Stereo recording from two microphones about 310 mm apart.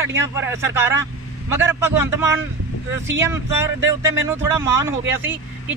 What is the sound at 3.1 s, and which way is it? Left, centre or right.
Speech, centre.